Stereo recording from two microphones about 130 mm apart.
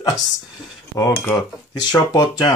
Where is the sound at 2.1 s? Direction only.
30° left (ahead or behind).